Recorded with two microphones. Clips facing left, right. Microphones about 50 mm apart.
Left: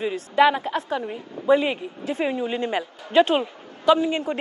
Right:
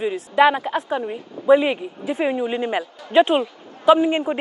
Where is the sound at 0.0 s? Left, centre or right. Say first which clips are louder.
Right 2 dB; centre.